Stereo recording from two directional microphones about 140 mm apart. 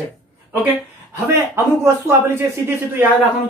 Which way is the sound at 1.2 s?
20° right (ahead or behind).